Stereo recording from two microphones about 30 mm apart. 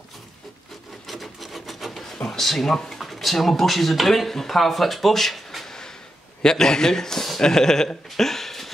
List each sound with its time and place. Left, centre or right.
1.0 s rub: centre
2.2 s speech: centre
6.4 s a man's voice: left
8.2 s a sound: centre